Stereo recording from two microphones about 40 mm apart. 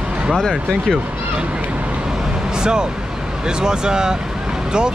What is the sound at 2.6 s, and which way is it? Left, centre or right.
Speech, centre.